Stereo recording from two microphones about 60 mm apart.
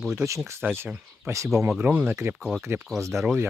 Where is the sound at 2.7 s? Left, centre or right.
Right.